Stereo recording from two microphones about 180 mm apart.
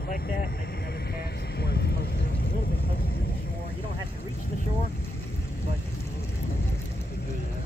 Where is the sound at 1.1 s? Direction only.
60° left (ahead or behind).